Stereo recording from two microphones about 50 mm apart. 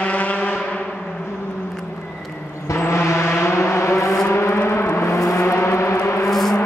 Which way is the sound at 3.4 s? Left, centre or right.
Left.